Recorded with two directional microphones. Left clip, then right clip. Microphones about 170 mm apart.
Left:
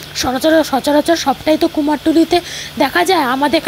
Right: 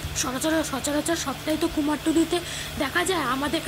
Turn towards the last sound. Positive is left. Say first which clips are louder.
# left 12 dB
turn(degrees=45)  # may be behind; listen again after turning